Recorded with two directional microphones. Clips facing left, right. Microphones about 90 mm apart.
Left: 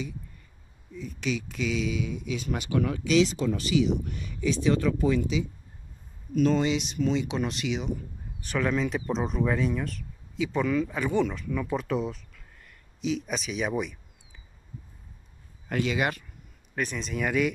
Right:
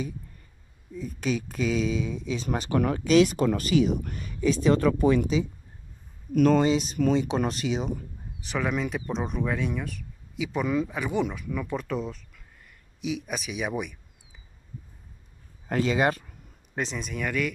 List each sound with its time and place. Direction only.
0.9 s speech: 45° right (ahead or behind)
6.3 s speech: 55° right (ahead or behind); by 7.9 s 35° right (ahead or behind)
8.5 s speech: 10° right (ahead or behind)
11.7 s a sound: 5° left (ahead or behind)
13.0 s speech: 10° right (ahead or behind)
15.7 s speech: 35° right (ahead or behind)
16.7 s speech: 20° right (ahead or behind)
17.0 s speech: 5° left (ahead or behind)